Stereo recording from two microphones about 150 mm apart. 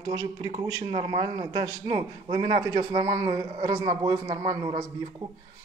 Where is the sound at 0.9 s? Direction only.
35° right (ahead or behind).